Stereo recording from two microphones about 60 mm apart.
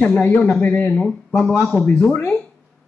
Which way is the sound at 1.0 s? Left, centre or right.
Centre.